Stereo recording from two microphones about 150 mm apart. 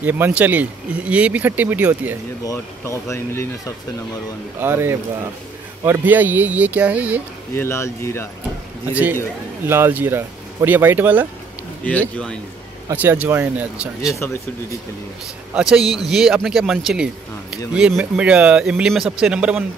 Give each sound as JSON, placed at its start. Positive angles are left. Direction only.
{"t": 0.0, "sound": "speech", "side_deg": -10}
{"t": 2.4, "sound": "speech", "side_deg": 20}
{"t": 4.6, "sound": "speech", "side_deg": -15}
{"t": 7.5, "sound": "speech", "side_deg": 15}
{"t": 9.7, "sound": "speech", "side_deg": -15}
{"t": 11.8, "sound": "speech", "side_deg": 10}
{"t": 12.9, "sound": "speech", "side_deg": -10}
{"t": 14.2, "sound": "speech", "side_deg": 20}
{"t": 15.5, "sound": "a man's voice", "side_deg": -5}